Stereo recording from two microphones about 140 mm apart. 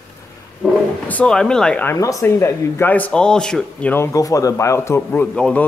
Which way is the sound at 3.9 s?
20° left (ahead or behind).